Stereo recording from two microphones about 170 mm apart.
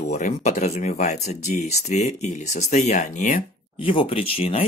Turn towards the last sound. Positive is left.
turn(degrees=35)  # may be behind; listen again after turning